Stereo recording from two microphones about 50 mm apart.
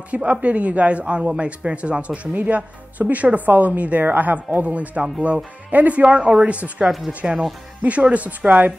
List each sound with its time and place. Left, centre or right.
0.1 s speech: right
6.0 s speech: centre